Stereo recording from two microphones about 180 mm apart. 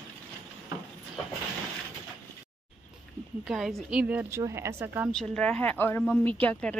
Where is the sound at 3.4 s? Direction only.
Centre (ahead or behind).